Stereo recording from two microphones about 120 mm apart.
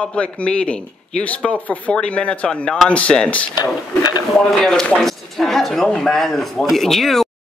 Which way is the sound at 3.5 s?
35° left (ahead or behind).